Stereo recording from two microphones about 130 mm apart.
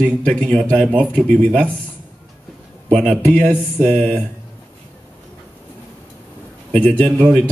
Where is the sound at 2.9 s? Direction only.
10° left (ahead or behind).